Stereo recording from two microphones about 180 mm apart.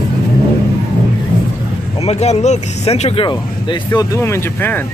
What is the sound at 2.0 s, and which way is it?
Speech, 35° left (ahead or behind).